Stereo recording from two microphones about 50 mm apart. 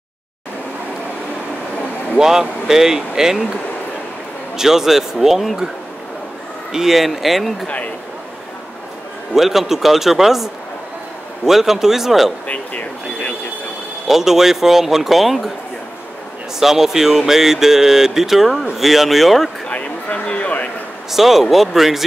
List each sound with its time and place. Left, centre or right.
2.1 s speech: centre
4.6 s speech: centre
6.7 s speech: centre
7.6 s speech: left
9.3 s speech: centre
14.0 s speech: centre
16.5 s speech: centre
19.7 s a sound: left
21.1 s speech: centre